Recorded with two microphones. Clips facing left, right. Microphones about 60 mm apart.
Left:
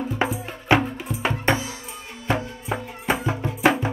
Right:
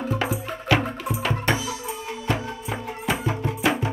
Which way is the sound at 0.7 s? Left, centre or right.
Left.